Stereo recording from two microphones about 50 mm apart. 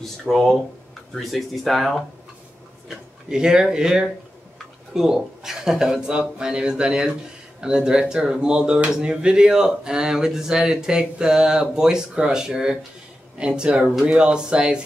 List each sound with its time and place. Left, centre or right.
0.0 s speech: centre
3.3 s speech: centre